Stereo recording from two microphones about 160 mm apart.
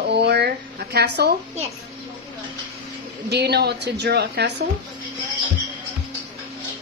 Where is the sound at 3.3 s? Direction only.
90° right.